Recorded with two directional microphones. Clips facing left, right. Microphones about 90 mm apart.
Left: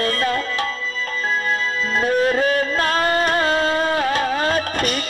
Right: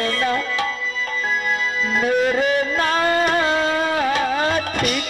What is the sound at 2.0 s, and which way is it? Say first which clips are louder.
Music: left 1 dB; 35° left (ahead or behind).